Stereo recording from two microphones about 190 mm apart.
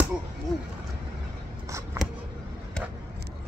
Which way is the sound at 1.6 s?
15° right (ahead or behind).